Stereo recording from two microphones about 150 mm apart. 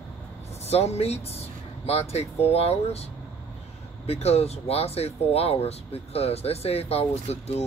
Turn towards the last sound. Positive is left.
turn(degrees=45)  # may be behind; listen again after turning